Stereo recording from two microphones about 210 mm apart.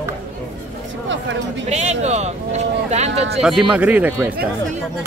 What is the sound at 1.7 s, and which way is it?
Speech, 30° right (ahead or behind).